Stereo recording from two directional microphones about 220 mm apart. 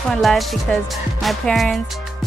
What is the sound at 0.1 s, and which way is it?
Speech, centre (ahead or behind).